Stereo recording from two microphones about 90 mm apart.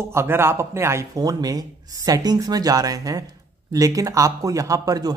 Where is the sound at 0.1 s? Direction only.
30° right (ahead or behind).